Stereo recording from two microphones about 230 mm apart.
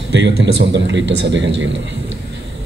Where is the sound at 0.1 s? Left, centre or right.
Right.